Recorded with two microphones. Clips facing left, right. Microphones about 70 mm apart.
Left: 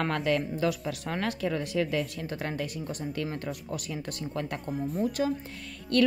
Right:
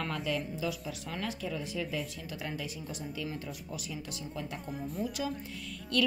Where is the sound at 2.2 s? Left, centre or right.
Left.